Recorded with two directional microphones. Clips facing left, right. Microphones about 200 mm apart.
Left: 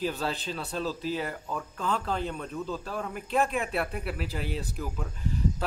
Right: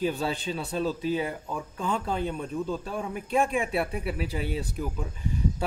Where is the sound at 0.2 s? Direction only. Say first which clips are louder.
Right 3 dB; 10° right (ahead or behind).